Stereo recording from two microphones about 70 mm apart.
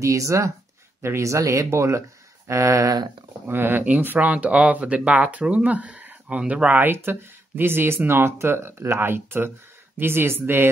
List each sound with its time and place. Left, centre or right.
0.0 s speech: right
3.4 s speech: right
6.8 s speech: right